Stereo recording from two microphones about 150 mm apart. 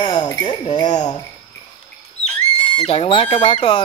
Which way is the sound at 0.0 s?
30° left (ahead or behind).